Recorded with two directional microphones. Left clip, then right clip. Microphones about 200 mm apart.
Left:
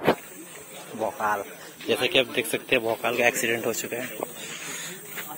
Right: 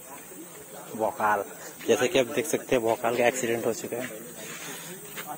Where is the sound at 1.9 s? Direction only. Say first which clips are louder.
Even; 30° right (ahead or behind).